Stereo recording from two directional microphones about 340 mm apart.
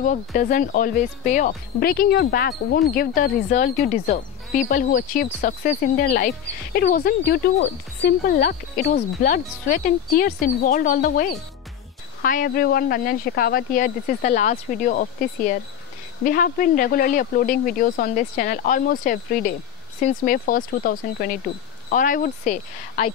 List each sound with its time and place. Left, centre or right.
0.0 s speech: left